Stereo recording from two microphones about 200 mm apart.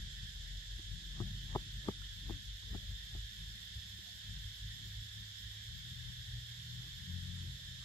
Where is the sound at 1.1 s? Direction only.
15° left (ahead or behind).